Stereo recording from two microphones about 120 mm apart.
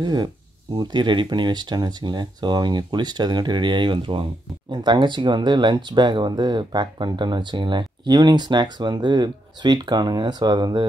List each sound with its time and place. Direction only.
0.0 s speech: 40° right (ahead or behind)